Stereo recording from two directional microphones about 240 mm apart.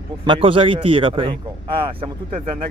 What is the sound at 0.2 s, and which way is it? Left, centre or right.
Speech, right.